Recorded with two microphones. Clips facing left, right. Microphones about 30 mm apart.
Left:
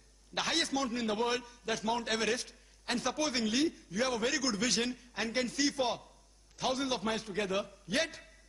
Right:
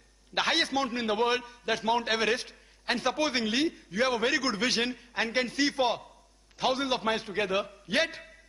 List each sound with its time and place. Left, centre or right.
0.3 s a man's voice: right